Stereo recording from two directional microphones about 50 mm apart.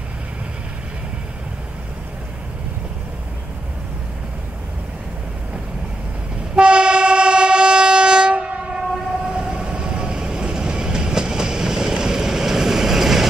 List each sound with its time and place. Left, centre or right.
6.5 s train: centre